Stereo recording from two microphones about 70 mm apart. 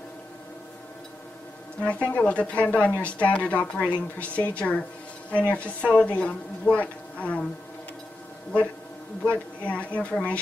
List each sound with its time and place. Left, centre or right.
1.8 s a woman's voice: left
9.2 s speech: left